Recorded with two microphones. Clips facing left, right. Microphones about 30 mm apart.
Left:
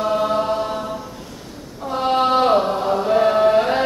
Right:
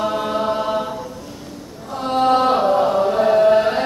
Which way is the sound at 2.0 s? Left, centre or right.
Left.